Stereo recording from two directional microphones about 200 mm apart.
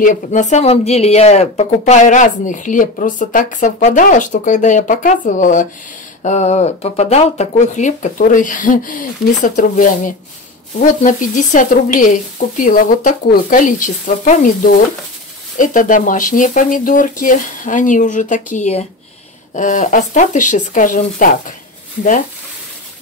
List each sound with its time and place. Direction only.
0.0 s speech: 40° left (ahead or behind)
15.5 s speech: 40° left (ahead or behind)